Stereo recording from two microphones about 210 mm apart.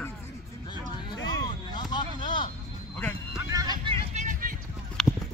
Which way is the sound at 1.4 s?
20° left (ahead or behind).